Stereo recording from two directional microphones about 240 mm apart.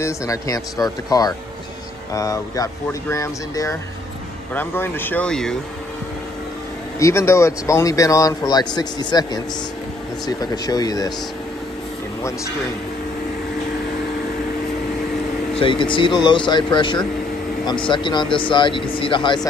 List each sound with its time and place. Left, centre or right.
0.0 s speech: centre
7.0 s speech: centre
15.5 s speech: left